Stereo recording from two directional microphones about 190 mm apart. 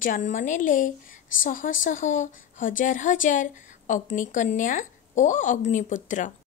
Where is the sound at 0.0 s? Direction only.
40° left (ahead or behind).